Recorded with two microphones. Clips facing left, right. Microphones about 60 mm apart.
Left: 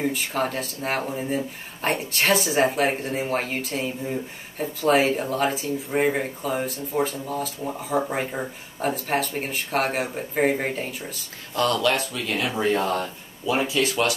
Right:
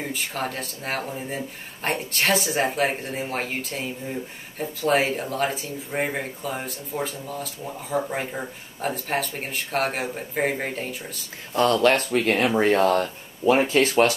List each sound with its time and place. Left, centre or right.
0.1 s speech: centre
11.5 s speech: right